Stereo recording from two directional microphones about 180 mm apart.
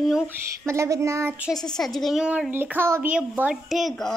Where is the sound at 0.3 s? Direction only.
15° right (ahead or behind).